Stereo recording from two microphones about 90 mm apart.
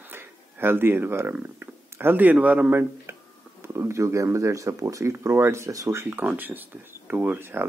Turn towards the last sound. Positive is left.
turn(degrees=-25)  # may be behind; listen again after turning